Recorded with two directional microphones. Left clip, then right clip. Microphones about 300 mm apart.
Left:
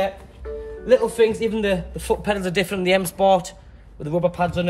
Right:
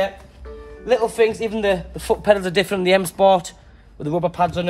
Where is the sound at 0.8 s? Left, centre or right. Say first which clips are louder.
Even; centre.